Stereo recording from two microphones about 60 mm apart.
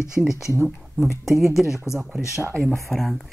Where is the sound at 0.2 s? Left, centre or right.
Centre.